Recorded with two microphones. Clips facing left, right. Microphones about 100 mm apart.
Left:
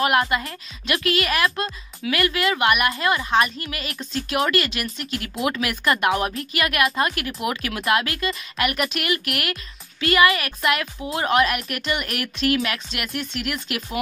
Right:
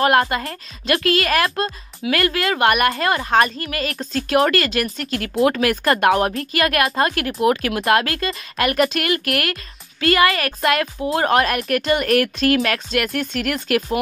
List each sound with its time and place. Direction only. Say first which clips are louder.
0.0 s a woman's voice: right 4 dB; 40° right (ahead or behind)